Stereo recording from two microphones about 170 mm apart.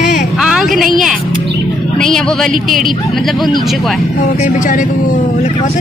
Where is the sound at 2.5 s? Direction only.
55° right (ahead or behind).